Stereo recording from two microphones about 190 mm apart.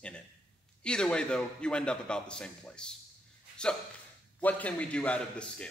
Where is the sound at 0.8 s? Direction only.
5° left (ahead or behind).